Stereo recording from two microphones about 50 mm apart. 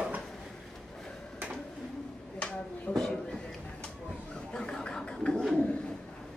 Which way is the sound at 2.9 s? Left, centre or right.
Centre.